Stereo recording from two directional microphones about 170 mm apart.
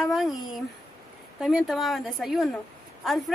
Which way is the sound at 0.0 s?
Centre (ahead or behind).